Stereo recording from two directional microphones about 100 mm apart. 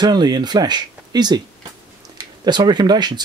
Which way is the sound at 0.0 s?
45° right (ahead or behind).